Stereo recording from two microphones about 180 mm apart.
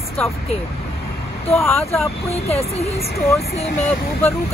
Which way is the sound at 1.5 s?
15° left (ahead or behind).